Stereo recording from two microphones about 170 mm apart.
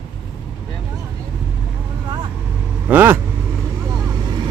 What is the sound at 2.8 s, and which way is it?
Vehicle, 10° right (ahead or behind).